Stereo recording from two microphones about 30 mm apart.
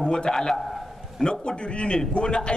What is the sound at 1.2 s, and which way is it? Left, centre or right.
A man's voice, left.